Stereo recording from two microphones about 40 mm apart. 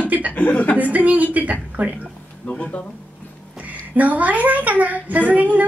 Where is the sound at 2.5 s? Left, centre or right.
Left.